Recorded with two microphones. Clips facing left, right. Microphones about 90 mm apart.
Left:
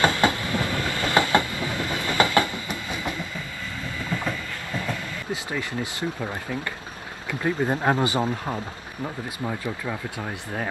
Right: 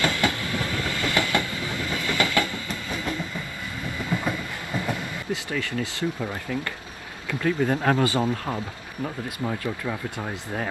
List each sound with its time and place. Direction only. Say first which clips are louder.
0.0 s train: left 3 dB; 25° left (ahead or behind)
4.1 s train: right 2 dB; 15° right (ahead or behind)
5.3 s speech: right 1 dB; 15° left (ahead or behind)
7.2 s speech: right 1 dB; 20° left (ahead or behind)
9.0 s speech: right 1 dB; 5° left (ahead or behind)